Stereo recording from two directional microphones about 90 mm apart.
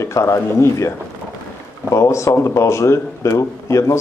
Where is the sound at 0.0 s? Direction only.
35° left (ahead or behind).